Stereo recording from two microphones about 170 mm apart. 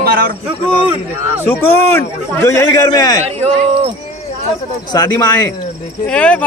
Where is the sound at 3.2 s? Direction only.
40° right (ahead or behind).